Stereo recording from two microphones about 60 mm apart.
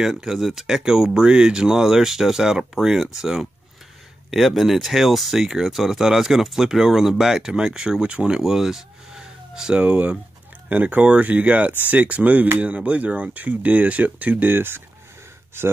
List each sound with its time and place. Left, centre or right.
0.0 s speech: centre; by 14.8 s right